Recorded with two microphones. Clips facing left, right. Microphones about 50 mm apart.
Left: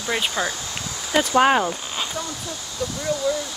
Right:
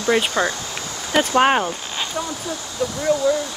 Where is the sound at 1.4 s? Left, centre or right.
Right.